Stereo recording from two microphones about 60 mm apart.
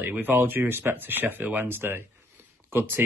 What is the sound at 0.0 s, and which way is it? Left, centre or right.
Speech, right.